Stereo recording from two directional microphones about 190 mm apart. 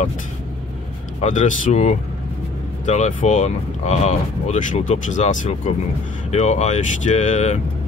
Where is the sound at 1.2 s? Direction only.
40° left (ahead or behind).